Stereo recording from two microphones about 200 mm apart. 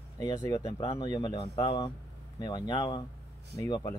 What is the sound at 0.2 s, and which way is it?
Speech, 15° left (ahead or behind).